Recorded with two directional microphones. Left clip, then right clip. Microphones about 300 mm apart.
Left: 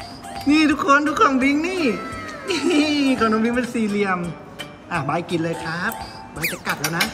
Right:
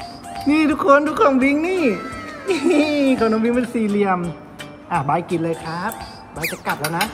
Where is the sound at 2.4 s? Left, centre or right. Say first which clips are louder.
Right 2 dB; centre.